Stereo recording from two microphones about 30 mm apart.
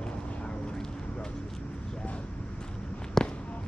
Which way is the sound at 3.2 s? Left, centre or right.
Centre.